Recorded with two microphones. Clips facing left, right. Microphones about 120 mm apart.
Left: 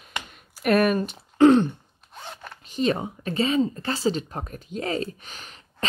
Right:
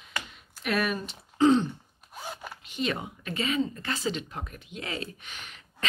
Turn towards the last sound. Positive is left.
turn(degrees=35)  # may be behind; listen again after turning